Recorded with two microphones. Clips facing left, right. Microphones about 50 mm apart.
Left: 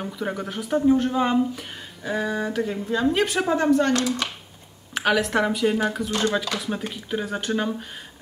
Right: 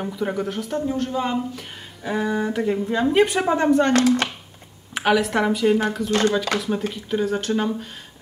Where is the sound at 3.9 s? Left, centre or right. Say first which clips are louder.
Right 5 dB; right.